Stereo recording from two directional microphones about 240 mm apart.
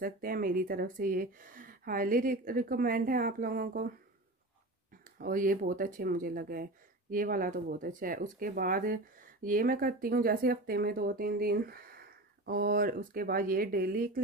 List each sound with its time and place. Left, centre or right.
0.0 s speech: right
5.2 s speech: right